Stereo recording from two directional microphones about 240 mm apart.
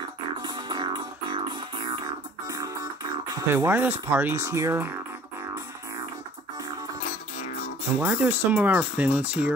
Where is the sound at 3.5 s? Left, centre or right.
Centre.